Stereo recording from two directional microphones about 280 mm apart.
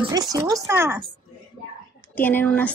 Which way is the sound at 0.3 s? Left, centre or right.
Centre.